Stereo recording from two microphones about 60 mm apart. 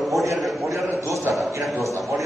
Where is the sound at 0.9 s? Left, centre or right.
Right.